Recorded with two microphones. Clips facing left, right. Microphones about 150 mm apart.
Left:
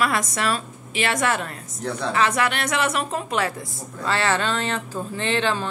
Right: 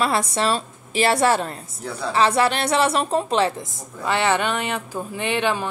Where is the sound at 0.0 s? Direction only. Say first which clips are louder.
Right 2 dB; 30° right (ahead or behind).